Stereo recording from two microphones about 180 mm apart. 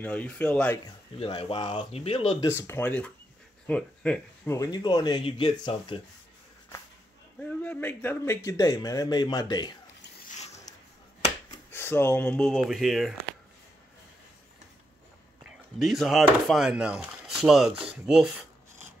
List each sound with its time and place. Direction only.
0.0 s speech: 10° left (ahead or behind)
0.8 s speech: 25° left (ahead or behind)
2.5 s speech: 15° left (ahead or behind)
4.6 s speech: 20° left (ahead or behind)
7.6 s speech: 10° left (ahead or behind)
10.2 s a sound: 40° left (ahead or behind)
11.7 s speech: 10° left (ahead or behind)
15.4 s speech: centre (ahead or behind)